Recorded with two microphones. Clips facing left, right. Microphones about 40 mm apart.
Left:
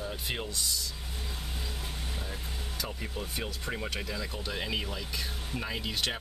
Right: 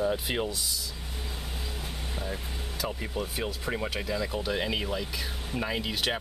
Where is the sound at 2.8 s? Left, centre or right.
Centre.